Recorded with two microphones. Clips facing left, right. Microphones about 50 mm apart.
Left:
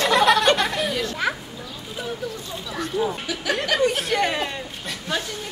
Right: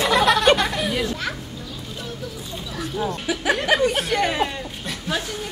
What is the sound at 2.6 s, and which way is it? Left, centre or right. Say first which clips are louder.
Speech: left 2 dB; centre.